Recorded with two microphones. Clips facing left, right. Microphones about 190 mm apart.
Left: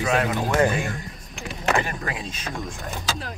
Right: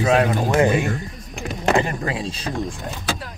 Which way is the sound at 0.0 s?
35° right (ahead or behind).